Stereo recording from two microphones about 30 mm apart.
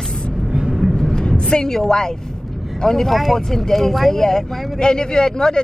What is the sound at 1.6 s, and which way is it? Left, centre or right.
A man's voice, centre.